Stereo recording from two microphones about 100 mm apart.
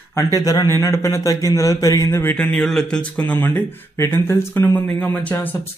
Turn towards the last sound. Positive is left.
turn(degrees=15)  # may be behind; listen again after turning